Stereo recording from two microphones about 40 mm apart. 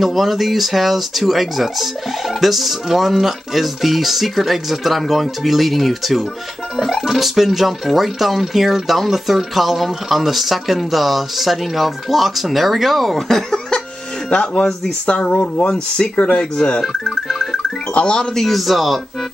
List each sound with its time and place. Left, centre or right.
0.0 s speech: centre
13.3 s cough: centre
14.3 s speech: left
16.5 s speech: left
16.8 s speech: centre
17.9 s speech: left
18.3 s speech: centre